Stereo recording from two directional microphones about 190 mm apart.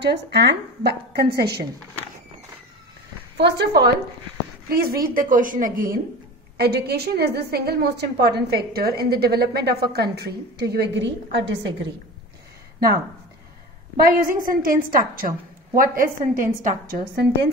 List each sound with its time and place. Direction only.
0.0 s a woman's voice: 60° right (ahead or behind)
3.3 s a woman's voice: 60° right (ahead or behind); by 5.9 s 45° right (ahead or behind)
6.6 s a woman's voice: 55° right (ahead or behind)
14.0 s a woman's voice: 50° right (ahead or behind)